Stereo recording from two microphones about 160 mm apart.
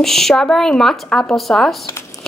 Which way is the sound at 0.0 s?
Centre (ahead or behind).